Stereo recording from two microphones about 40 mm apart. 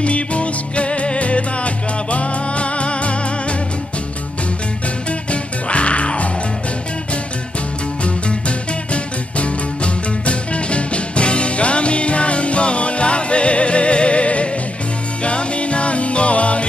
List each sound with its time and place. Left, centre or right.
0.0 s music: left
5.3 s music: left
8.0 s music: left